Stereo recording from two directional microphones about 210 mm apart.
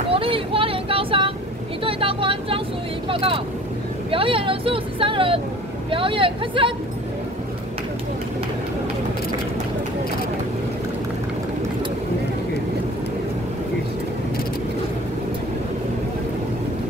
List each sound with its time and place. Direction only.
0.1 s vehicle: 25° right (ahead or behind)
4.1 s speech: 25° right (ahead or behind)